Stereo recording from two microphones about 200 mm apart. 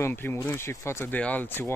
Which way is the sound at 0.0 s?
10° left (ahead or behind).